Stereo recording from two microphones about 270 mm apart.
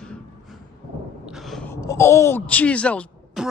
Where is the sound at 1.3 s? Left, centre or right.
Centre.